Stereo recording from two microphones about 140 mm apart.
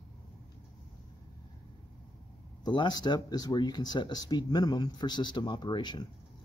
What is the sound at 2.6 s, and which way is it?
Speech, 30° left (ahead or behind).